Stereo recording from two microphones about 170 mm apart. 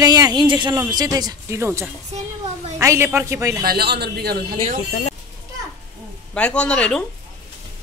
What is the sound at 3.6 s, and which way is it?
A man's voice, 70° right (ahead or behind).